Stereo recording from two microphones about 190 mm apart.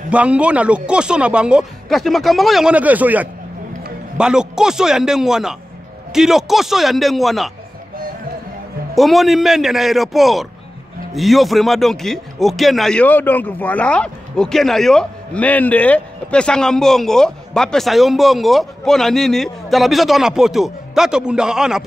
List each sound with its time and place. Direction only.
0.1 s a man's voice: 5° right (ahead or behind)
8.9 s a man's voice: centre (ahead or behind)